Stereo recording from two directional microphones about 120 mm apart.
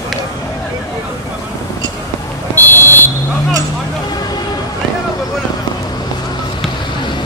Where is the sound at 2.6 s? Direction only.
20° left (ahead or behind).